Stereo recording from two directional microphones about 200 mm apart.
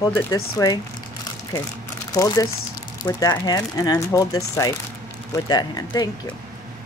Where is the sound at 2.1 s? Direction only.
15° left (ahead or behind).